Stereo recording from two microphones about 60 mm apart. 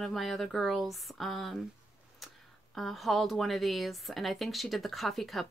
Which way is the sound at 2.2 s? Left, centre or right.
Centre.